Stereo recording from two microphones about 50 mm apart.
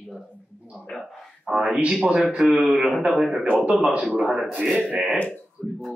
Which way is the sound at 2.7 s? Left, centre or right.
Centre.